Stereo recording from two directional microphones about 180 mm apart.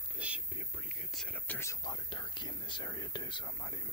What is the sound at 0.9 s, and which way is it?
Whispering, 5° left (ahead or behind).